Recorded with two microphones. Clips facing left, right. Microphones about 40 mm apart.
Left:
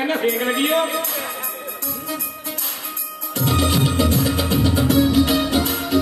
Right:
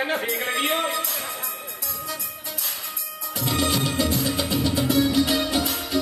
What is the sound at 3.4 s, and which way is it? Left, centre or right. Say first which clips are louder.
Music: left 4 dB; centre.